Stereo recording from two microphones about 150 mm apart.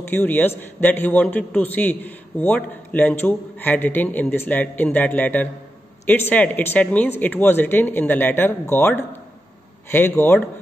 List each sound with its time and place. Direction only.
0.1 s a man's voice: 10° left (ahead or behind)